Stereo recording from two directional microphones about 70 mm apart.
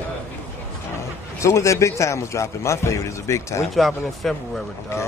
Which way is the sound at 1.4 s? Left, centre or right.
Left.